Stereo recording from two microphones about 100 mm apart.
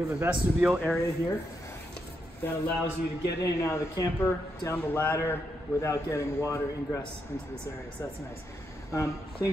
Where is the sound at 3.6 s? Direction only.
30° left (ahead or behind).